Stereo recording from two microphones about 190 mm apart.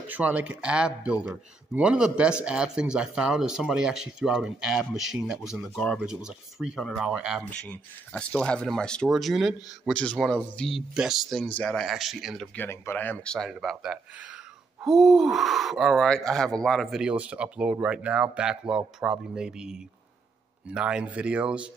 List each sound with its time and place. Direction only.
0.1 s speech: 10° right (ahead or behind)
7.4 s speech: 10° left (ahead or behind)
12.5 s speech: 10° left (ahead or behind); by 21.6 s 5° right (ahead or behind)